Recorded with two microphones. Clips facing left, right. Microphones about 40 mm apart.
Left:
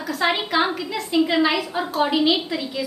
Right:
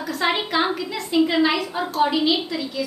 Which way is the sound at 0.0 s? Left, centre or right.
Centre.